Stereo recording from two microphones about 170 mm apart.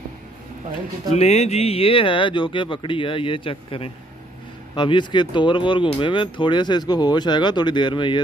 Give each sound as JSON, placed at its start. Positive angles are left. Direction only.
{"t": 1.1, "sound": "speech", "side_deg": 40}